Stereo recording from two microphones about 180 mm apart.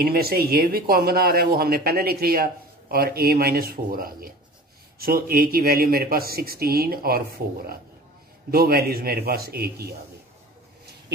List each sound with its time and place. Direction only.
0.0 s speech: 60° right (ahead or behind)